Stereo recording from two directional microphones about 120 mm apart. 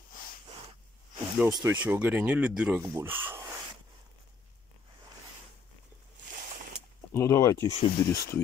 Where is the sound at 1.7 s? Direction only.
15° right (ahead or behind).